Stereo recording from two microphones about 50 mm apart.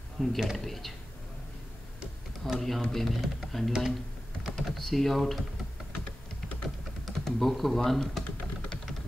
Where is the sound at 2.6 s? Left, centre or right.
Centre.